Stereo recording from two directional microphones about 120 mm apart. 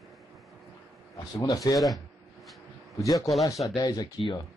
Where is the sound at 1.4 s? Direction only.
30° left (ahead or behind).